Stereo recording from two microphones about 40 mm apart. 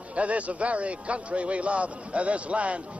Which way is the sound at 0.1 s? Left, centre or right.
Right.